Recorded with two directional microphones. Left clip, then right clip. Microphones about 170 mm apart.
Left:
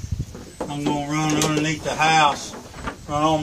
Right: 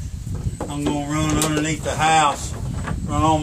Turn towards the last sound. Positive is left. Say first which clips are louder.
# right 1 dB
turn(degrees=-5)  # may be behind; listen again after turning